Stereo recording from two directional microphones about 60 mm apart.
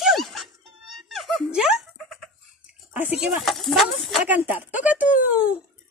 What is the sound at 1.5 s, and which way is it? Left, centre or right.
Speech, centre.